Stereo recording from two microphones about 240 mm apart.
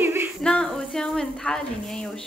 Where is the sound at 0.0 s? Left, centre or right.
Centre.